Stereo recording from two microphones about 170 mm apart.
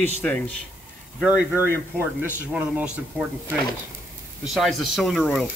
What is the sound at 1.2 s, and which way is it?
Speech, 5° right (ahead or behind).